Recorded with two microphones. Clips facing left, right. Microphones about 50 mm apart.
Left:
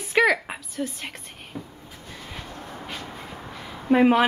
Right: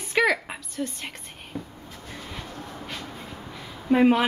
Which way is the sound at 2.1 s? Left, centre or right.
Centre.